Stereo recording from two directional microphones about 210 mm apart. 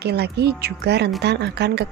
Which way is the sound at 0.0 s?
50° right (ahead or behind).